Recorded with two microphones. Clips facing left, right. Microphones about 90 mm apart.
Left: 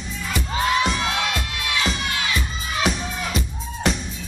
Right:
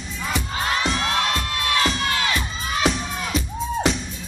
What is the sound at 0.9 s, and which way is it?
Crowd, 40° right (ahead or behind).